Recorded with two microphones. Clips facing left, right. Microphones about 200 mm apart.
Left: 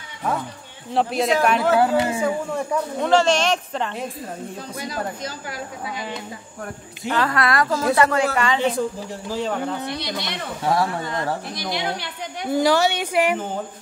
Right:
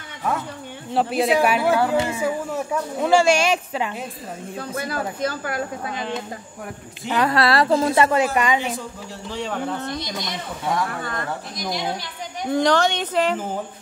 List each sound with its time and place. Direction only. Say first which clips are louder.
0.9 s speech: right 1 dB; 5° right (ahead or behind)
1.8 s a sound: left 2 dB; 25° left (ahead or behind)
2.5 s speech: left 1 dB; 5° right (ahead or behind)
4.6 s speech: right 5 dB; 55° right (ahead or behind)
5.9 s speech: right 3 dB; 5° left (ahead or behind)
7.1 s speech: right 1 dB; 20° right (ahead or behind)
7.3 s a woman's voice: right 3 dB; 30° right (ahead or behind)
9.3 s speech: left 2 dB; centre (ahead or behind)
9.9 s a woman's voice: left 1 dB; 70° left (ahead or behind)
10.7 s speech: left 3 dB; 30° left (ahead or behind)
11.5 s a woman's voice: even; 65° left (ahead or behind)
12.4 s a woman's voice: even; 5° left (ahead or behind)